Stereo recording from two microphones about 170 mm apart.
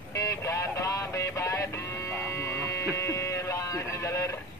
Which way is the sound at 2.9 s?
15° left (ahead or behind).